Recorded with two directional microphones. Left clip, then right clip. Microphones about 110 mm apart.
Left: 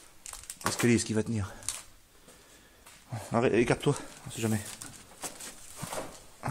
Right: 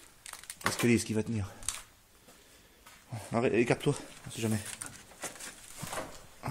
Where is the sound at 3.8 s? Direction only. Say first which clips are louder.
Left 2 dB; centre (ahead or behind).